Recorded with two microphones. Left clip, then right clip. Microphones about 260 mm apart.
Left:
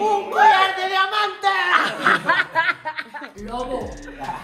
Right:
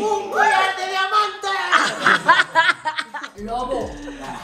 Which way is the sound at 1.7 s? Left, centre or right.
Centre.